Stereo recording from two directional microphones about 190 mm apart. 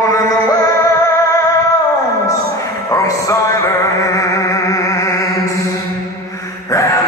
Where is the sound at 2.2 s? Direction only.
15° left (ahead or behind).